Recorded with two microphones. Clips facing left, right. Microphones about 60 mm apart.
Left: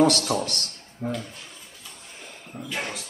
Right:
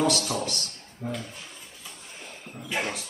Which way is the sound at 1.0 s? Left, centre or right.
Left.